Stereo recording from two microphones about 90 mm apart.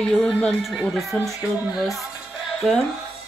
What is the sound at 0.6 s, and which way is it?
Speech, centre (ahead or behind).